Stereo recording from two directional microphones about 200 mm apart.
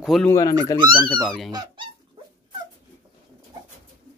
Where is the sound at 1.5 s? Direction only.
20° right (ahead or behind).